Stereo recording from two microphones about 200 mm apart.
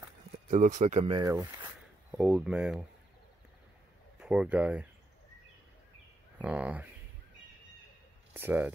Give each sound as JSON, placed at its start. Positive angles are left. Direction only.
{"t": 0.5, "sound": "speech", "side_deg": -35}
{"t": 1.2, "sound": "speech", "side_deg": -15}
{"t": 2.0, "sound": "speech", "side_deg": -5}
{"t": 4.2, "sound": "speech", "side_deg": -5}
{"t": 6.3, "sound": "speech", "side_deg": -5}
{"t": 8.3, "sound": "speech", "side_deg": -10}